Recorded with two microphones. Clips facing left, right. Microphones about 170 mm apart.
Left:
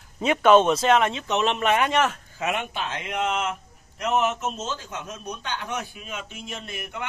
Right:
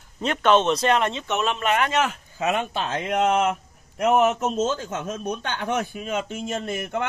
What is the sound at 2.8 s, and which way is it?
A man's voice, 40° right (ahead or behind).